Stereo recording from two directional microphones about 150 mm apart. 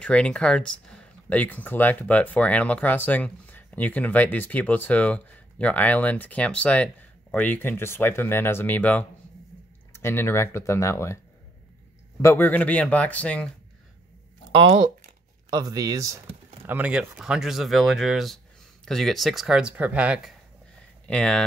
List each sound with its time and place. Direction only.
0.0 s speech: 5° left (ahead or behind)
12.2 s speech: 15° left (ahead or behind)
14.5 s speech: 35° right (ahead or behind)
16.6 s speech: 10° right (ahead or behind)
21.1 s speech: 5° left (ahead or behind)